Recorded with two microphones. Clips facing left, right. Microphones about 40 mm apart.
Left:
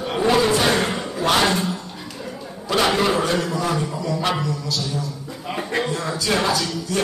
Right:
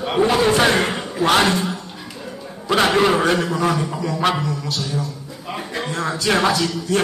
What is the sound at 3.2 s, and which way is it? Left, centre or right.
Speech, right.